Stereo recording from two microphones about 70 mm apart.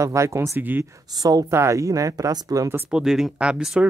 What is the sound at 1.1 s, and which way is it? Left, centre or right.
Speech, right.